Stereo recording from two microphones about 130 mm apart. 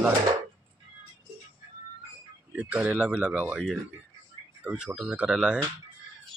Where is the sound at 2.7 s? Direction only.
15° right (ahead or behind).